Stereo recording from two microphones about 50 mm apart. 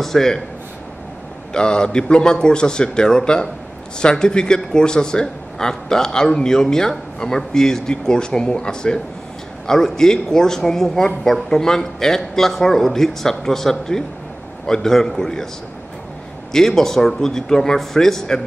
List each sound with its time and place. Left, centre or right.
0.0 s a man's voice: centre
1.5 s a man's voice: centre
16.5 s a man's voice: centre